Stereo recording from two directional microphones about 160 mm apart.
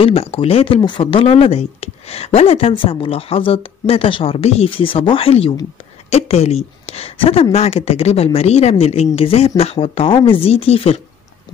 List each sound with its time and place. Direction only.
0.0 s speech: 35° left (ahead or behind)